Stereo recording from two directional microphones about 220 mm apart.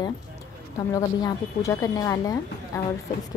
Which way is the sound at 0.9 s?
15° left (ahead or behind).